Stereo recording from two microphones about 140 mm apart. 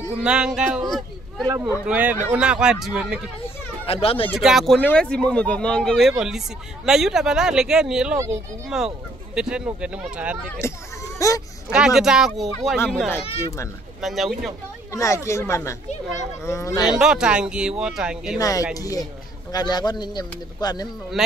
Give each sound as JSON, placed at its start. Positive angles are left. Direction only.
{"t": 0.2, "sound": "speech", "side_deg": -5}
{"t": 3.4, "sound": "children playing", "side_deg": 45}
{"t": 4.4, "sound": "speech", "side_deg": -5}
{"t": 10.6, "sound": "a child's voice", "side_deg": 20}
{"t": 11.7, "sound": "speech", "side_deg": -5}
{"t": 13.1, "sound": "speech", "side_deg": 20}
{"t": 14.0, "sound": "speech", "side_deg": 0}
{"t": 14.9, "sound": "speech", "side_deg": 20}
{"t": 16.8, "sound": "speech", "side_deg": -5}
{"t": 18.4, "sound": "speech", "side_deg": 25}